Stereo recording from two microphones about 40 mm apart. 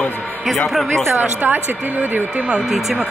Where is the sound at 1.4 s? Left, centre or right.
Right.